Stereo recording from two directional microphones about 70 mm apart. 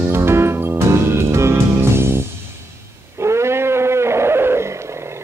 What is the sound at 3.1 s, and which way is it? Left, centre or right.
Wild animals, right.